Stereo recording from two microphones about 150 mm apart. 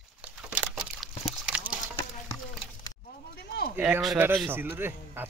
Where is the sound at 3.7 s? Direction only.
15° right (ahead or behind).